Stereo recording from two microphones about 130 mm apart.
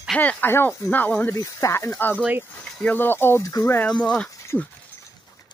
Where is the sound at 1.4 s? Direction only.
25° left (ahead or behind).